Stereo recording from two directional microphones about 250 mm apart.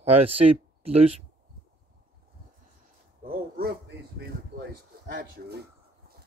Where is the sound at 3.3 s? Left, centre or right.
Right.